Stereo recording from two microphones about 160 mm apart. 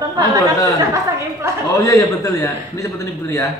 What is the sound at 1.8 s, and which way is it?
A man's voice, 20° left (ahead or behind).